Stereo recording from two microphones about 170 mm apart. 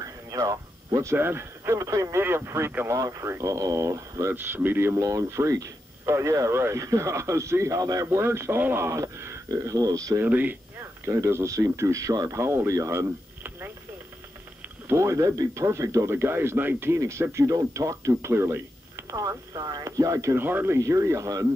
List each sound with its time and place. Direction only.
0.0 s speech: 20° right (ahead or behind)
14.9 s speech: 15° right (ahead or behind)